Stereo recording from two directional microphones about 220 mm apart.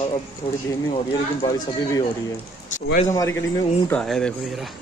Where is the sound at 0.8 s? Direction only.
25° left (ahead or behind).